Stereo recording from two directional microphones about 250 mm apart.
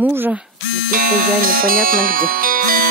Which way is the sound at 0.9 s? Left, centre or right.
Right.